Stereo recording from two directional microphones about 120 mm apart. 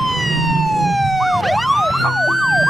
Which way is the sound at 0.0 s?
Centre (ahead or behind).